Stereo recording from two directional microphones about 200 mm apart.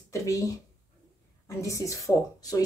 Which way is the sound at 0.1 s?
15° left (ahead or behind).